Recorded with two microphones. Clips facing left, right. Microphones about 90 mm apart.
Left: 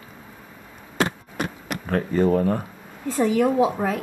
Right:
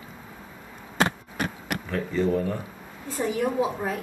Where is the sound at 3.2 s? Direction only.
90° left.